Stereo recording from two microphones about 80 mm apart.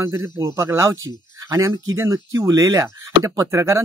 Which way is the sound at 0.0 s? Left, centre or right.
Right.